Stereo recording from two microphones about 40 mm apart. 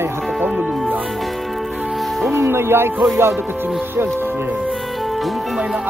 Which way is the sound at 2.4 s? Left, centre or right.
Right.